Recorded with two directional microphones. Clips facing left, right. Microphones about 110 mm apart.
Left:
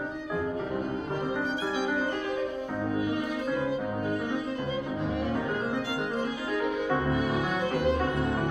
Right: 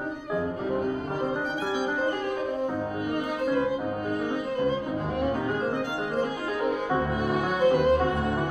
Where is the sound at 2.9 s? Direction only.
50° right (ahead or behind).